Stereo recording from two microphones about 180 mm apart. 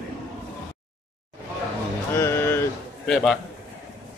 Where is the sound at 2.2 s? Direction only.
15° left (ahead or behind).